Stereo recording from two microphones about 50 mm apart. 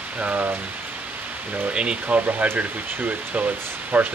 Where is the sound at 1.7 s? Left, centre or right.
Right.